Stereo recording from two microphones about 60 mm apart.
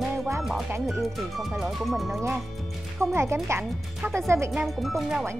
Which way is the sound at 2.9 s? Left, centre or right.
Right.